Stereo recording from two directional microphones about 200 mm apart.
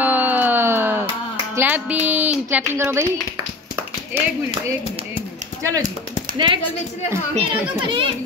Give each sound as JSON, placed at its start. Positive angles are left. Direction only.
{"t": 0.0, "sound": "a sound", "side_deg": -10}
{"t": 1.5, "sound": "speech", "side_deg": -10}
{"t": 5.6, "sound": "a child's voice", "side_deg": -15}